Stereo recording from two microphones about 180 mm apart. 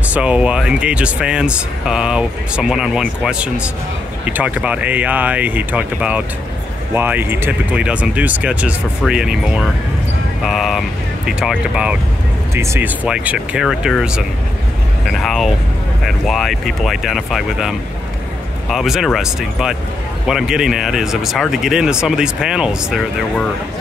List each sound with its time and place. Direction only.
0.1 s speech: 5° right (ahead or behind)